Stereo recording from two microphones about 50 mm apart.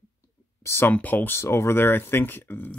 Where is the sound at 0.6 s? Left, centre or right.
Left.